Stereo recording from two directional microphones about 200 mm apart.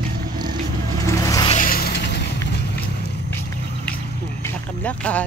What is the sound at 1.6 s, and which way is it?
Vehicle, 50° left (ahead or behind).